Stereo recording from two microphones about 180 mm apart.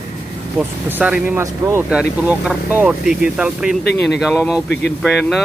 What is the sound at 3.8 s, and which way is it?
Speech, 65° left (ahead or behind).